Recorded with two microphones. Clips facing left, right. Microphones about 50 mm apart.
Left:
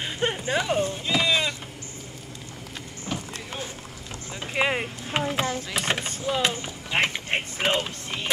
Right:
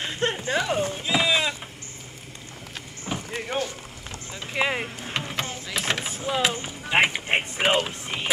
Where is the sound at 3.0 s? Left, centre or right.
Right.